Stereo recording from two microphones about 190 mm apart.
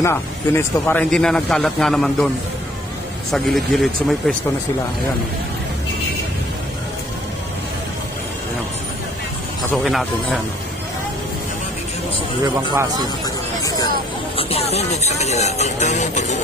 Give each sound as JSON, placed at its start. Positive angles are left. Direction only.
{"t": 0.0, "sound": "speech", "side_deg": 15}
{"t": 9.8, "sound": "speech", "side_deg": 0}
{"t": 12.7, "sound": "speech", "side_deg": -20}
{"t": 14.3, "sound": "speech", "side_deg": 35}